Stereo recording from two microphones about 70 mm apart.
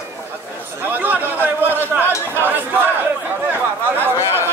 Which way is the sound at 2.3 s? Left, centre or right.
Right.